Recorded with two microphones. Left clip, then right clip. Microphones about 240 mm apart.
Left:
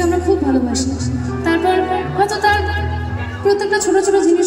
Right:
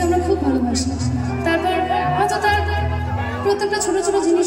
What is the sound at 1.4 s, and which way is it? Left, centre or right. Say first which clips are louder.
Music: left 3 dB; centre.